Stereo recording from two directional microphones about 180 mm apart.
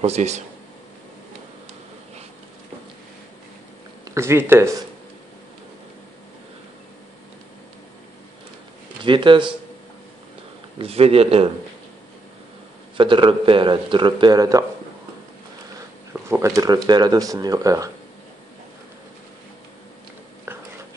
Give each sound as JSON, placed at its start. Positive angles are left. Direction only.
{"t": 0.0, "sound": "a man's voice", "side_deg": -35}
{"t": 4.0, "sound": "speech", "side_deg": -15}
{"t": 9.0, "sound": "speech", "side_deg": -25}
{"t": 10.8, "sound": "a man's voice", "side_deg": -35}
{"t": 12.9, "sound": "speech", "side_deg": -25}
{"t": 16.1, "sound": "speech", "side_deg": -15}
{"t": 20.5, "sound": "a sound", "side_deg": -10}